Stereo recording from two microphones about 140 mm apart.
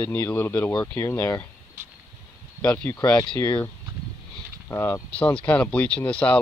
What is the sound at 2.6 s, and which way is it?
Speech, 10° left (ahead or behind).